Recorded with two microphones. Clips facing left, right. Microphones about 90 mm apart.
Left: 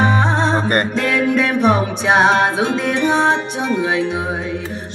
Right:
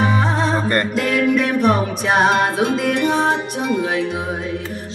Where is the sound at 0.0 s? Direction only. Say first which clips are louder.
Left 2 dB; 30° left (ahead or behind).